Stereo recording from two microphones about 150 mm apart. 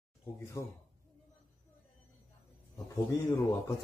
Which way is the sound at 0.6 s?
20° left (ahead or behind).